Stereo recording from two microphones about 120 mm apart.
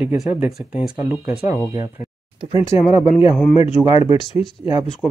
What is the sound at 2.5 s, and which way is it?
Speech, 65° left (ahead or behind).